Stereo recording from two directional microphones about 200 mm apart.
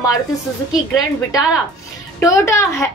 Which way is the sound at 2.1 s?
15° left (ahead or behind).